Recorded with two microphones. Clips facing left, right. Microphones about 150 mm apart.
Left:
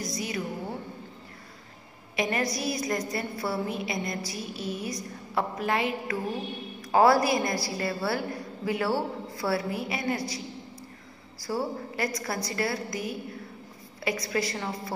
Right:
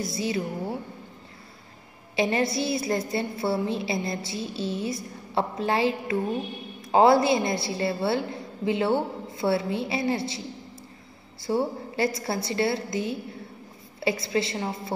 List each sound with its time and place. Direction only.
0.0 s a woman's voice: 25° right (ahead or behind)
2.1 s a woman's voice: 25° right (ahead or behind)
11.4 s a woman's voice: 25° right (ahead or behind)